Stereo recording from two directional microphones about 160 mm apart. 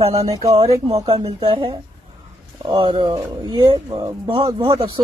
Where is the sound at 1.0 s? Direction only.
35° right (ahead or behind).